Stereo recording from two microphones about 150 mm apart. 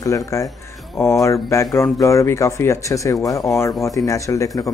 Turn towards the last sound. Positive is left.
turn(degrees=20)  # may be behind; listen again after turning